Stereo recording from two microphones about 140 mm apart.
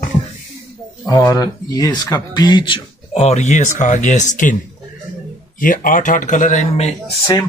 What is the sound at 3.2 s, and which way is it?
Speech, 55° left (ahead or behind).